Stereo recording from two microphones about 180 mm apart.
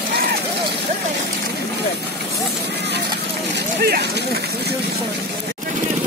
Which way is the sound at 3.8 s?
60° right (ahead or behind).